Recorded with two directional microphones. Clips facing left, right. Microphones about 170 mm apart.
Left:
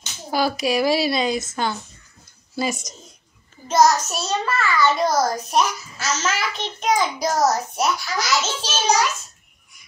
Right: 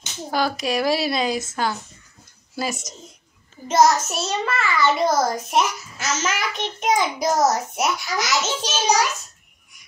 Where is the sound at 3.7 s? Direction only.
25° right (ahead or behind).